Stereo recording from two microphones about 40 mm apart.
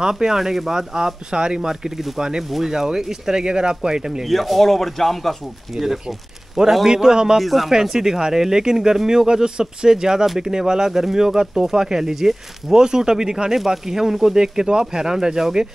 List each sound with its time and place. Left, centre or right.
0.0 s speech: centre
4.3 s speech: centre
5.7 s speech: centre
7.3 s speech: centre
7.7 s speech: centre